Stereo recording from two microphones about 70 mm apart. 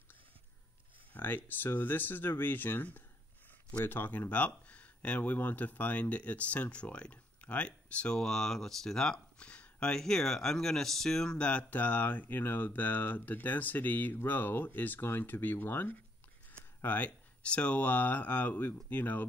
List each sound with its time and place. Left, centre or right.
1.1 s speech: left